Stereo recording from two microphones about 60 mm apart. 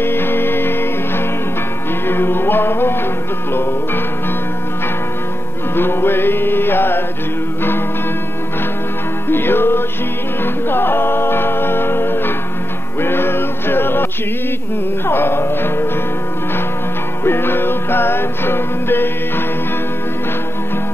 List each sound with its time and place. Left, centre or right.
0.0 s music: left
5.8 s music: left
9.3 s music: left
15.0 s music: left
17.2 s music: left